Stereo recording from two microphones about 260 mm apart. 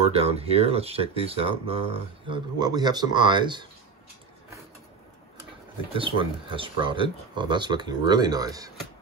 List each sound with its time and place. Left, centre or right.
0.0 s speech: right
5.9 s speech: centre